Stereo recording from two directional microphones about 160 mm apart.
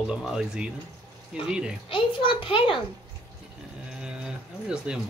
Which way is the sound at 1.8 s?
30° left (ahead or behind).